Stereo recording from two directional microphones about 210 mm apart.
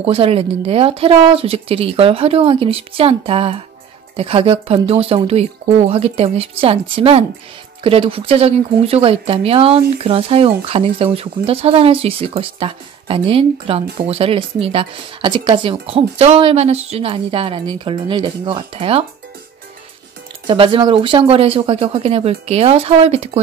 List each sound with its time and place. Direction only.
0.0 s speech: 25° right (ahead or behind)
20.4 s speech: 25° right (ahead or behind)